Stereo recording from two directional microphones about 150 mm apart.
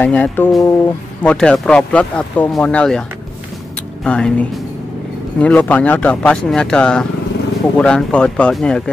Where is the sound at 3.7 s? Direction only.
5° left (ahead or behind).